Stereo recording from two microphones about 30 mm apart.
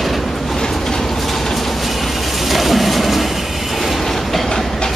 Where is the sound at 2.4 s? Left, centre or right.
Centre.